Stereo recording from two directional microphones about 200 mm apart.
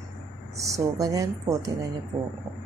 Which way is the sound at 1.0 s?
15° right (ahead or behind).